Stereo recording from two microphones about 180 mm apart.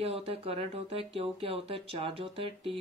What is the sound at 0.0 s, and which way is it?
Speech, 35° right (ahead or behind).